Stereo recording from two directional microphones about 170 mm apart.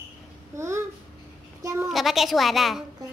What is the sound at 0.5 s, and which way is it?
Speech, 15° right (ahead or behind).